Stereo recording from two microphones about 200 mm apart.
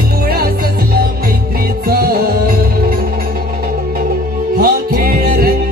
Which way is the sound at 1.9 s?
50° right (ahead or behind).